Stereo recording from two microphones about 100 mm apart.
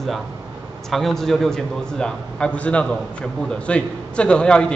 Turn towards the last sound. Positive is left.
turn(degrees=10)  # may be behind; listen again after turning